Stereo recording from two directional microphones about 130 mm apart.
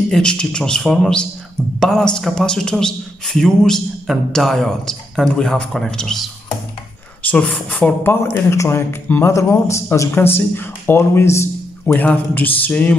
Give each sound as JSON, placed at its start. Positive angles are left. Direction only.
{"t": 0.1, "sound": "speech", "side_deg": 5}
{"t": 7.2, "sound": "speech", "side_deg": 10}